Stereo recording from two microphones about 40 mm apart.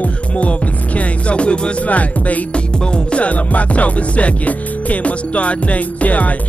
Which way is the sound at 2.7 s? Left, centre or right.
Left.